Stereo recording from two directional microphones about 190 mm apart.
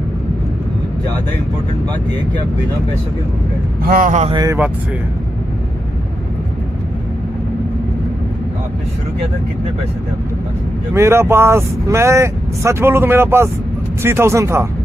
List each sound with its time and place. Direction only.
3.8 s speech: 45° right (ahead or behind)
4.3 s speech: 20° right (ahead or behind)
10.9 s speech: 15° right (ahead or behind)